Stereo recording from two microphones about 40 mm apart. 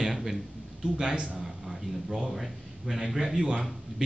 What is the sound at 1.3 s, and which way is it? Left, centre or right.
A man's voice, centre.